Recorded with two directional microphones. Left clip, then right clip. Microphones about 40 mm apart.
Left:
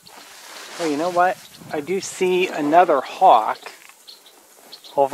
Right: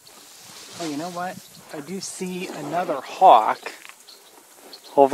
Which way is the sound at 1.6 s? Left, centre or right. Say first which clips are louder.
Left 9 dB; left.